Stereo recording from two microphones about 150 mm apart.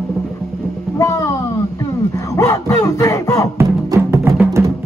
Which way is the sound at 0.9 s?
20° left (ahead or behind).